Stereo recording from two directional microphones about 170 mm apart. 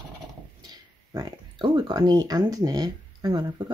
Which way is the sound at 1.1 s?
25° right (ahead or behind).